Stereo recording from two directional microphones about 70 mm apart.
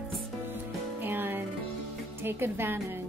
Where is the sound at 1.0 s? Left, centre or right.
Right.